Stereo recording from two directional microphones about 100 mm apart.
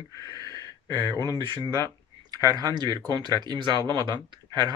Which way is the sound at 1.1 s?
35° left (ahead or behind).